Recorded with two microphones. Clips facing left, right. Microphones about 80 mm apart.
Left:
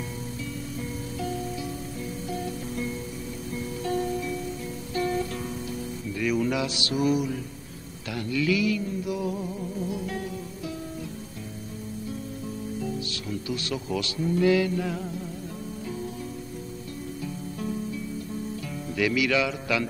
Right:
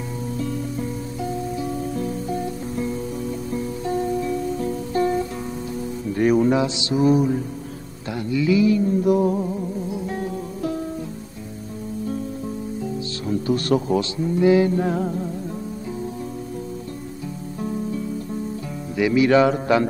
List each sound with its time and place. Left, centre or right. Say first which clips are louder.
0.7 s music: right 5 dB; right
8.1 s mantra: right 5 dB; right
9.0 s music: right 11 dB; right
13.3 s speech: right 12 dB; right
14.2 s music: right 5 dB; right
18.9 s music: right 8 dB; right